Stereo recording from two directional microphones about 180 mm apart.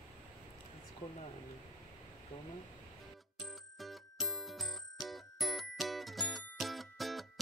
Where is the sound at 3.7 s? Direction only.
Centre (ahead or behind).